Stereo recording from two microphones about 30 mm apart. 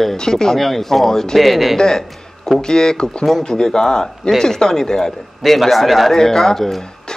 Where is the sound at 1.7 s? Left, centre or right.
Centre.